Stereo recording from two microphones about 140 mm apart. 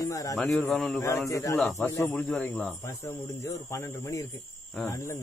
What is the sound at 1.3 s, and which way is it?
Speech, 25° left (ahead or behind).